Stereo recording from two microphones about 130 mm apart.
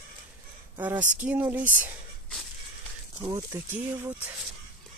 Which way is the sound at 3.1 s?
35° right (ahead or behind).